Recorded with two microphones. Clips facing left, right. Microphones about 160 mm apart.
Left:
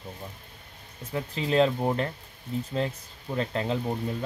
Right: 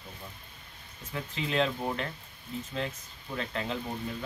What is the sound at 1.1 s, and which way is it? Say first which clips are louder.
Speech: left 6 dB; 35° left (ahead or behind).